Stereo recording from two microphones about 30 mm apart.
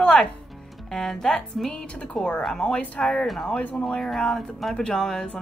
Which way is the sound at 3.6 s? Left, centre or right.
Left.